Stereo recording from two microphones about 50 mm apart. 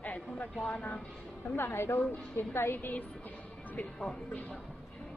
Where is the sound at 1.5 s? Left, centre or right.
Left.